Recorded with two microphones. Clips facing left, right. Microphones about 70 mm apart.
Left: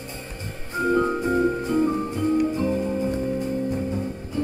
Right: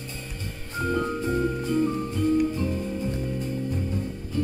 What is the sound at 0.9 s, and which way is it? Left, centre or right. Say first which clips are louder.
Music: left 4 dB; left.